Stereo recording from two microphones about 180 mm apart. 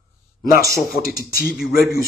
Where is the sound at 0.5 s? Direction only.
55° left (ahead or behind).